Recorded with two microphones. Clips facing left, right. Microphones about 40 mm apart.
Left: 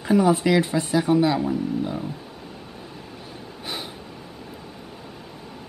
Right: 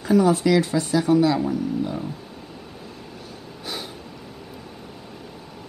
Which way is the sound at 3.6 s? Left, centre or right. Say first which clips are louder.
Even; centre.